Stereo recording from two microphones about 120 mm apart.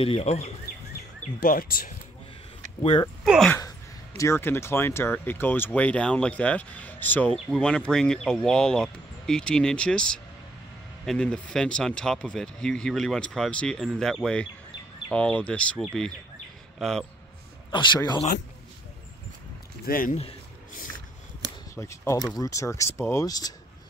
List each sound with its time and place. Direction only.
0.0 s speech: 55° left (ahead or behind)
2.8 s speech: 50° left (ahead or behind)
3.3 s speech: centre (ahead or behind)
4.2 s a man's voice: 20° left (ahead or behind); by 17.0 s centre (ahead or behind)
17.6 s a man's voice: 40° left (ahead or behind)
20.1 s speech: 60° left (ahead or behind)
21.7 s speech: 25° left (ahead or behind)